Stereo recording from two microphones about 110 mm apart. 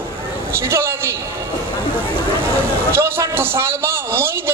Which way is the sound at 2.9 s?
20° right (ahead or behind).